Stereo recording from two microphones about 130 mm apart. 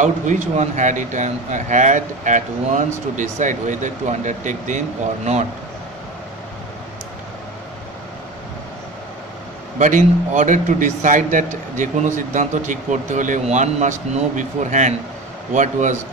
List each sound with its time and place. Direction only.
0.0 s speech: 75° right (ahead or behind)
9.8 s speech: 75° right (ahead or behind)